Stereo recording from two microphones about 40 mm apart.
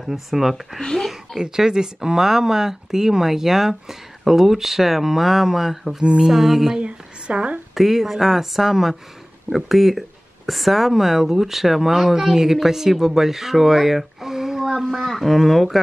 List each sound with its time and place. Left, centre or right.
0.0 s speech: centre
0.7 s speech: centre
1.0 s a sound: centre
1.4 s speech: centre
6.8 s a sound: right
7.7 s speech: centre
14.8 s speech: centre